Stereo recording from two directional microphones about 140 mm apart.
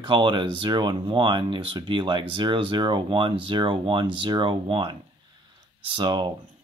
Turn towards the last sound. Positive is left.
turn(degrees=-30)  # may be behind; listen again after turning